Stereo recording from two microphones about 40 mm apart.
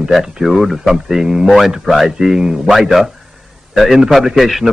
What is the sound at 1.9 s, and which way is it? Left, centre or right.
Speech, centre.